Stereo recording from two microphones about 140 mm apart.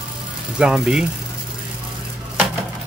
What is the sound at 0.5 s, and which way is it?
Speech, 5° right (ahead or behind).